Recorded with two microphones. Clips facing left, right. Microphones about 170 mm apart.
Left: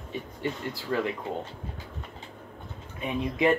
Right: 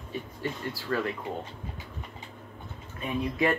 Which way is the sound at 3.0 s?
20° left (ahead or behind).